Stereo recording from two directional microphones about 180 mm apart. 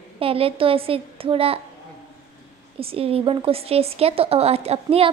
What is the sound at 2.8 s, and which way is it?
A woman's voice, 30° right (ahead or behind).